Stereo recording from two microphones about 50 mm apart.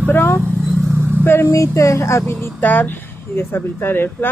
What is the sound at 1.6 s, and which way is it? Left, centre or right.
Speech, left.